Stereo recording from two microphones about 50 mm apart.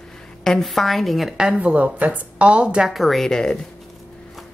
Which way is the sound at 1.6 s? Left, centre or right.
Right.